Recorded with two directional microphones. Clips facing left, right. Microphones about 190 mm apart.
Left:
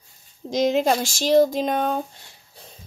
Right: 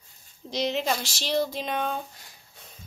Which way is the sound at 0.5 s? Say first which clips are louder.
Left 8 dB; 45° left (ahead or behind).